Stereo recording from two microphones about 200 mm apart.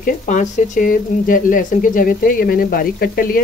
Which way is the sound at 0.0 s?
40° left (ahead or behind).